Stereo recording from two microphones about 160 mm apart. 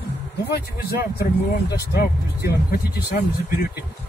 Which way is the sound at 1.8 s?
75° left (ahead or behind).